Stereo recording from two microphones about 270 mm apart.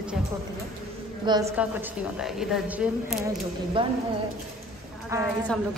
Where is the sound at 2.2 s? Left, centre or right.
Centre.